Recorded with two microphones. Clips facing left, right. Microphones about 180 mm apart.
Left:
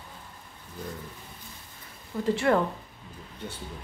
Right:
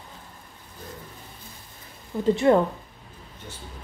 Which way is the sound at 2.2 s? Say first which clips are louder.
Right 5 dB; 20° right (ahead or behind).